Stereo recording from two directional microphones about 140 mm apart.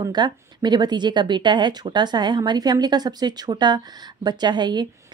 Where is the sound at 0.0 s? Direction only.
30° right (ahead or behind).